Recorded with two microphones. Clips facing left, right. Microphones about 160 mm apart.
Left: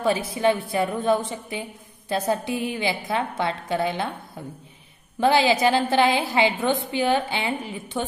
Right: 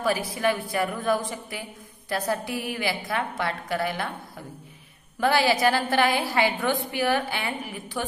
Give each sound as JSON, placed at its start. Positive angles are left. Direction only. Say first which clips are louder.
{"t": 0.0, "sound": "a woman's voice", "louder": "left 3 dB", "side_deg": 25}
{"t": 5.2, "sound": "a woman's voice", "louder": "left 3 dB", "side_deg": 20}